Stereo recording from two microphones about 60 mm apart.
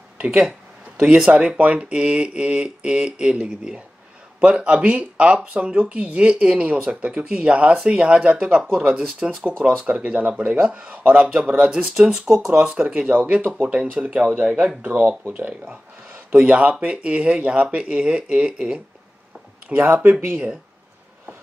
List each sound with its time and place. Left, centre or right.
0.4 s speech: centre
4.4 s speech: centre
8.5 s speech: centre
13.1 s speech: right
19.7 s speech: right